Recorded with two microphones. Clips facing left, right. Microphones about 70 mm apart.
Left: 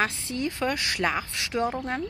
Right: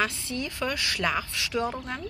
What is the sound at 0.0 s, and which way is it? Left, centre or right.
A woman's voice, left.